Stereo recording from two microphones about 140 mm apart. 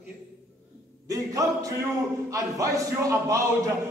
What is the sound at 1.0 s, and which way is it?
Speech, 25° right (ahead or behind).